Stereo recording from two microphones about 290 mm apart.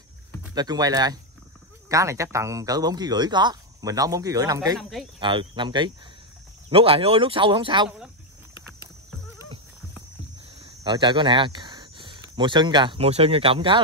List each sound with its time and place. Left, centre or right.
0.4 s speech: centre
4.7 s speech: centre
5.2 s speech: centre
10.6 s speech: centre